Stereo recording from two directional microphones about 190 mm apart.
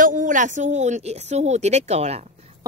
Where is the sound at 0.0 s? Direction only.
45° right (ahead or behind).